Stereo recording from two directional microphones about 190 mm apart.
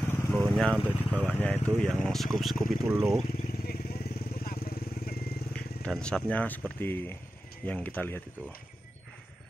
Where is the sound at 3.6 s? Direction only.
50° left (ahead or behind).